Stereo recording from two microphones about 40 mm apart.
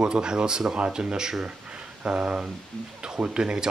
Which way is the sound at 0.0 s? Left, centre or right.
Right.